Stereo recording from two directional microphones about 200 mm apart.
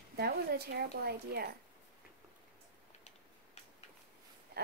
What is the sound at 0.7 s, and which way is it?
Speech, 50° right (ahead or behind).